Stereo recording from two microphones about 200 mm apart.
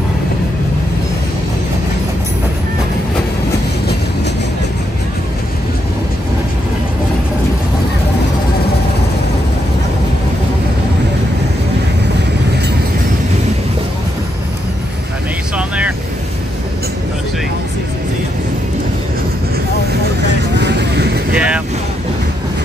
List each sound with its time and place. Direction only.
15.5 s vehicle: 5° right (ahead or behind)
20.5 s vehicle: 55° right (ahead or behind)